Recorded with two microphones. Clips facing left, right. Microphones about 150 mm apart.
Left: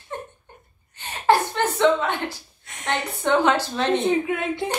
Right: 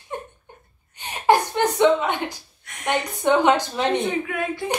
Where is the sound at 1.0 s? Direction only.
15° right (ahead or behind).